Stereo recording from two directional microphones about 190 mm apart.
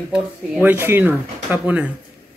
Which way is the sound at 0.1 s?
10° right (ahead or behind).